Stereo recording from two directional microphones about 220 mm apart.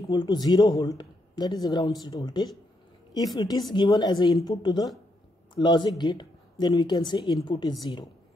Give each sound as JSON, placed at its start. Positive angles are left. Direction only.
{"t": 0.1, "sound": "speech", "side_deg": 20}